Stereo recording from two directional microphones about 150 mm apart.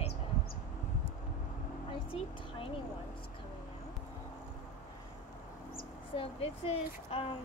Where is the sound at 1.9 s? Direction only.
35° left (ahead or behind).